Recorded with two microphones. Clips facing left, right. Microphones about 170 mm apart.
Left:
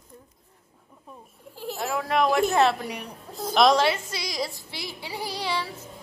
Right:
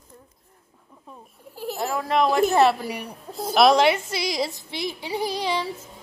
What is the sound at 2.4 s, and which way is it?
A woman's voice, 5° right (ahead or behind).